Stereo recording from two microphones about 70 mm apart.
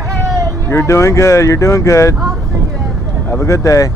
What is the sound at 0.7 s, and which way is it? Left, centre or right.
Speech, left.